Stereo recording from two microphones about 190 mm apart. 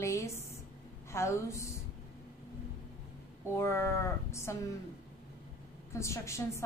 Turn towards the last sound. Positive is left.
turn(degrees=15)  # may be behind; listen again after turning